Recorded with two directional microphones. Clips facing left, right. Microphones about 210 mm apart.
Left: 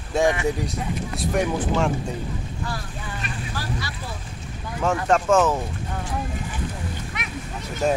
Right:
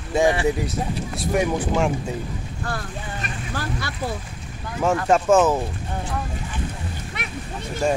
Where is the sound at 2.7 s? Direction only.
55° right (ahead or behind).